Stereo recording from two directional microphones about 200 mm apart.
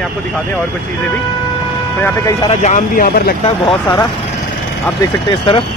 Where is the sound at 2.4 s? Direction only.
40° left (ahead or behind).